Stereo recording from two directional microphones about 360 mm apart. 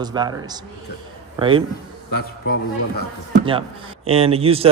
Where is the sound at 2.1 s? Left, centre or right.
Left.